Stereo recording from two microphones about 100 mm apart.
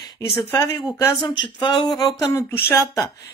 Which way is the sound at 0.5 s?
25° left (ahead or behind).